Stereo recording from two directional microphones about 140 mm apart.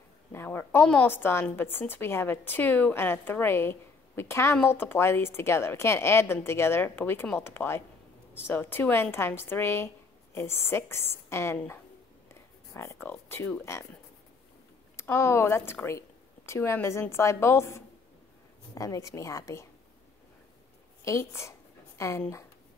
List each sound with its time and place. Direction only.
0.3 s a woman's voice: 15° left (ahead or behind)
15.0 s a woman's voice: 20° left (ahead or behind)
21.0 s a sound: 20° left (ahead or behind)